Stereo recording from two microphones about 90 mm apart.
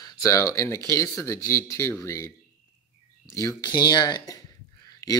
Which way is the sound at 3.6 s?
50° left (ahead or behind).